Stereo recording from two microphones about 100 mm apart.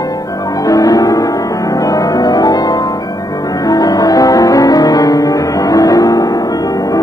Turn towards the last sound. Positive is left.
turn(degrees=35)  # may be behind; listen again after turning